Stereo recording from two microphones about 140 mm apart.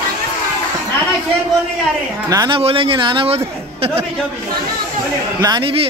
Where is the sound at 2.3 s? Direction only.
30° right (ahead or behind).